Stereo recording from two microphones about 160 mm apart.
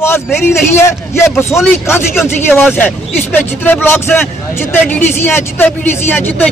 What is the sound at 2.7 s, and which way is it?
Speech, 10° left (ahead or behind).